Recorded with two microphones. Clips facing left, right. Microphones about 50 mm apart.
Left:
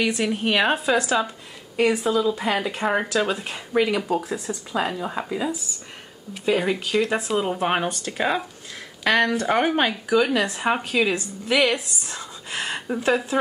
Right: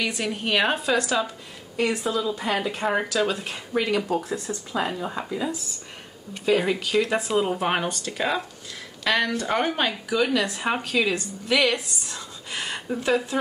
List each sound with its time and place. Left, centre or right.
0.0 s speech: centre
6.3 s speech: centre
10.4 s speech: centre